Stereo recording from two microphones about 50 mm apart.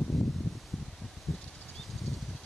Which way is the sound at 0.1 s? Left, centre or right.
Centre.